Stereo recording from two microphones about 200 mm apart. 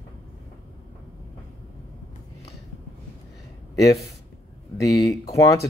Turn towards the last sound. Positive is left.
turn(degrees=15)  # may be behind; listen again after turning